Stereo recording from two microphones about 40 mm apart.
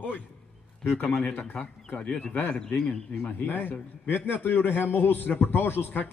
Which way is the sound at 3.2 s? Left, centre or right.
Left.